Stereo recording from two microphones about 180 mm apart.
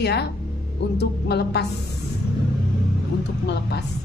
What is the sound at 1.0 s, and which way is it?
Music, 65° left (ahead or behind).